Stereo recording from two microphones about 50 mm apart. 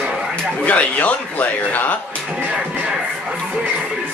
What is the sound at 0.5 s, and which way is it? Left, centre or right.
Speech, left.